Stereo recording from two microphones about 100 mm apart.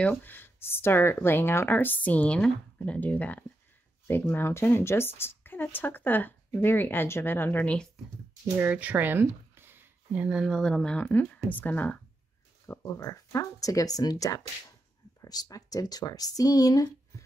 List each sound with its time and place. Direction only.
0.0 s speech: 20° left (ahead or behind)
8.5 s speech: 15° right (ahead or behind)
10.4 s speech: 5° left (ahead or behind)
12.6 s speech: 35° left (ahead or behind)